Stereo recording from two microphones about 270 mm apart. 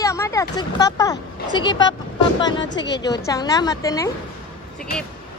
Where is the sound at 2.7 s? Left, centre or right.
Left.